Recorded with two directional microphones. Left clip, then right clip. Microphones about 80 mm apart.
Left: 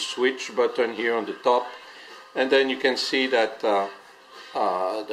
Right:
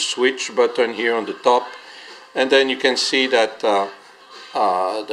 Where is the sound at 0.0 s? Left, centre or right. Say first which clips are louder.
Right 5 dB; right.